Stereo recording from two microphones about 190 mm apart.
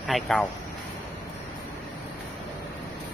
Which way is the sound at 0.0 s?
Centre (ahead or behind).